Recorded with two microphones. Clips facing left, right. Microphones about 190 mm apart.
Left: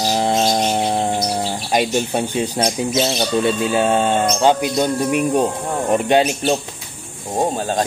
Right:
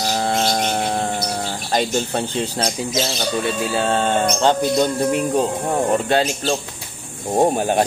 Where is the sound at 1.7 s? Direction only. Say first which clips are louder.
Left 2 dB; 15° left (ahead or behind).